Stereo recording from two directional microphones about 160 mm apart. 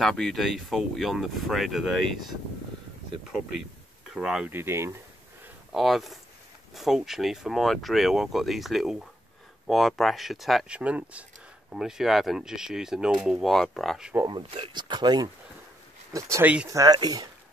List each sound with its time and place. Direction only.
0.0 s speech: centre (ahead or behind); by 4.9 s 15° right (ahead or behind)
5.7 s speech: centre (ahead or behind)
14.2 s speech: 30° right (ahead or behind)